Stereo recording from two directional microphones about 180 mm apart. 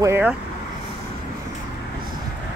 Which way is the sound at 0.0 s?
10° right (ahead or behind).